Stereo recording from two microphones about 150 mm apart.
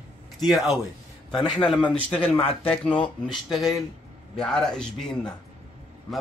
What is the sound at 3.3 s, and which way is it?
Speech, centre (ahead or behind).